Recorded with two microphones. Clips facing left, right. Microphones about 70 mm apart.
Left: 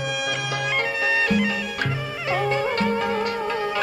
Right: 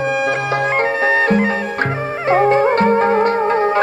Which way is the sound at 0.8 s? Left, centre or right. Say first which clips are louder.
Right 6 dB; right.